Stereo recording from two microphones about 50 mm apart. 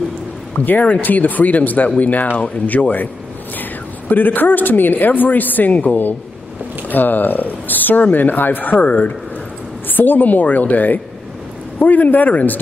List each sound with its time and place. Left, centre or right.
0.6 s speech: left
4.1 s speech: left